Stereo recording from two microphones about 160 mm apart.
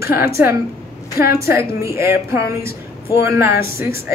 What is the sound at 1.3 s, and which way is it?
A woman's voice, 15° right (ahead or behind).